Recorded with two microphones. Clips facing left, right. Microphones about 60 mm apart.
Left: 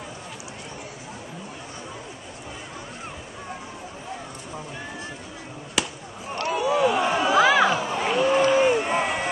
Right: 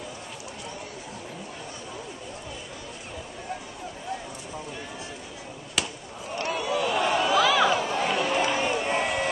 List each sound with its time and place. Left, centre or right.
5.8 s basketball bounce: centre
6.5 s a sound: centre
7.0 s chatter: left
8.3 s run: left
8.6 s crowd: centre